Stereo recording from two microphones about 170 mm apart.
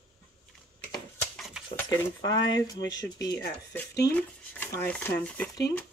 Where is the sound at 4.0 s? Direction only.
10° left (ahead or behind).